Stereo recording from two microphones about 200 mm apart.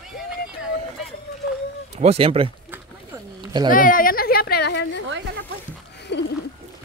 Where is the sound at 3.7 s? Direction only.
45° left (ahead or behind).